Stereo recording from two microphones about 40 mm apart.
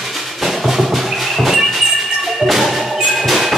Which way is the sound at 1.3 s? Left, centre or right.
Centre.